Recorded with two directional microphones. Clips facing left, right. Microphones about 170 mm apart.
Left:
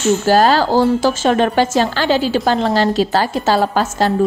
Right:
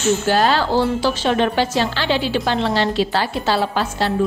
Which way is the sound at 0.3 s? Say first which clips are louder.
Left 6 dB; 40° left (ahead or behind).